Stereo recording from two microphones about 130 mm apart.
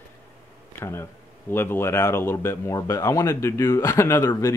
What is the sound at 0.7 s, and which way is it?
Speech, 20° left (ahead or behind).